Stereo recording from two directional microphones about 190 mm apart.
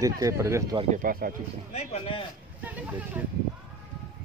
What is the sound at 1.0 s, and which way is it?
Speech, 50° right (ahead or behind).